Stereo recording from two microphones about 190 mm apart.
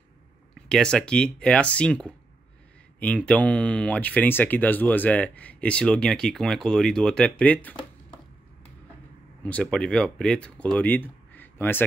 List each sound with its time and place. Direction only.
0.6 s speech: 5° left (ahead or behind)
9.4 s speech: 5° left (ahead or behind)